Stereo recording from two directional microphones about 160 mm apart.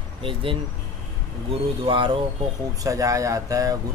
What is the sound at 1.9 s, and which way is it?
Speech, 35° right (ahead or behind).